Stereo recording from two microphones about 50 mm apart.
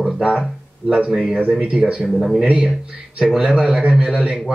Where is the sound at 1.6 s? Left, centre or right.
Right.